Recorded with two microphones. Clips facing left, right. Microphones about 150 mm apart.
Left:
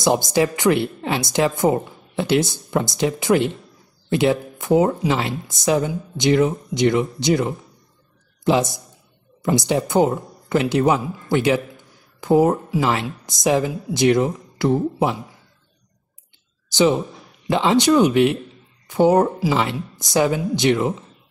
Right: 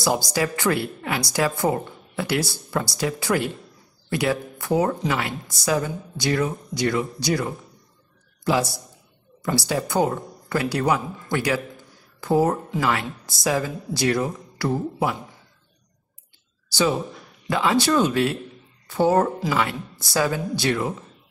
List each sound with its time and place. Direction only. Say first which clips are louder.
0.0 s a woman's voice: left 5 dB; 25° left (ahead or behind)
11.3 s a sound: left 5 dB; 20° left (ahead or behind)
12.8 s a woman's voice: left 1 dB; 20° left (ahead or behind)
17.5 s a woman's voice: left 4 dB; 25° left (ahead or behind)